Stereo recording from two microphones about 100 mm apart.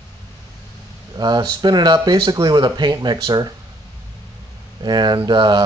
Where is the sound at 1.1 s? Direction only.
45° right (ahead or behind).